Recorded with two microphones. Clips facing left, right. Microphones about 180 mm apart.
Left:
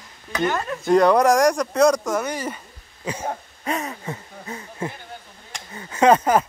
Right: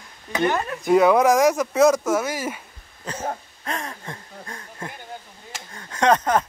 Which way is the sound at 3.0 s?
10° left (ahead or behind).